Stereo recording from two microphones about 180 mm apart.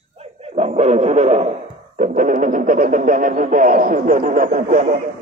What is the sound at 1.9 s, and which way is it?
Speech, 45° right (ahead or behind).